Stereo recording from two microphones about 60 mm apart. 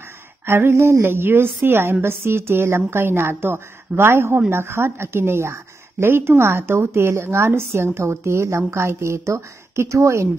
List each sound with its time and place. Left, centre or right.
0.5 s a woman's voice: right